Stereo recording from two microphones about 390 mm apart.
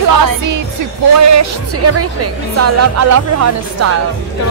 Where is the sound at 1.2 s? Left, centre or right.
Right.